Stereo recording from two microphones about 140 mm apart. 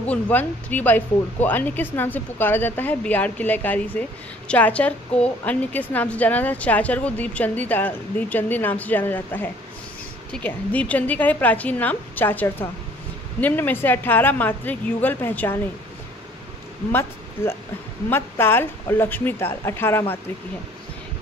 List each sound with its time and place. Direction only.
0.1 s a woman's voice: 10° left (ahead or behind)
16.9 s a woman's voice: 15° left (ahead or behind)